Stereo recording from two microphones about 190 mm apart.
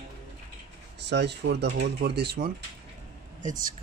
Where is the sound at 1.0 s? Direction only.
65° right (ahead or behind).